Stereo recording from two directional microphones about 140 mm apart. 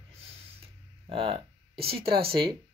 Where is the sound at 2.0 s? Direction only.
90° right.